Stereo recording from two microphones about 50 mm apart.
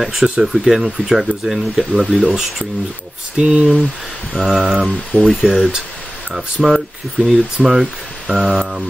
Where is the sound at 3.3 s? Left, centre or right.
Right.